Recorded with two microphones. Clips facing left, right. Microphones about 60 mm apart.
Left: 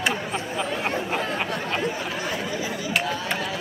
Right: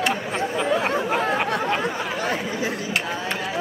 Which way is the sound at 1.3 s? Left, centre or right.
Right.